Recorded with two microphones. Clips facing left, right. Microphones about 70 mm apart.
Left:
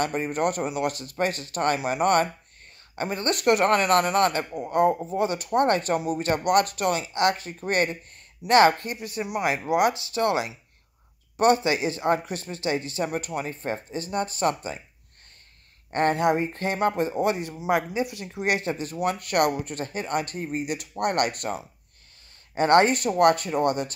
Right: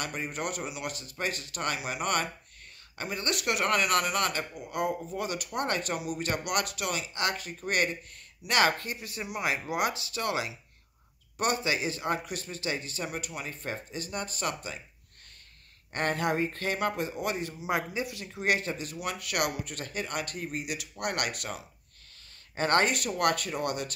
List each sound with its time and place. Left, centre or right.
0.0 s speech: left
15.9 s speech: left
18.8 s speech: left